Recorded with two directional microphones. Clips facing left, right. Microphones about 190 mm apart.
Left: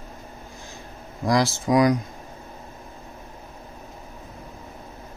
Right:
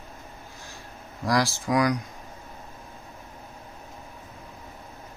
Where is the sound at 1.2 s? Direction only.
20° left (ahead or behind).